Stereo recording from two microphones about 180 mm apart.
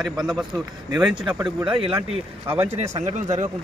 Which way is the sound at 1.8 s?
30° right (ahead or behind).